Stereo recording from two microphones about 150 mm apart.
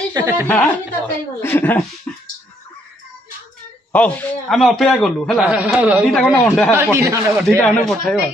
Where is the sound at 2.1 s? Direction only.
10° left (ahead or behind).